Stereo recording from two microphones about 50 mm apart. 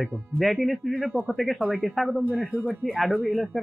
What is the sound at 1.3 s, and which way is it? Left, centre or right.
Speech, centre.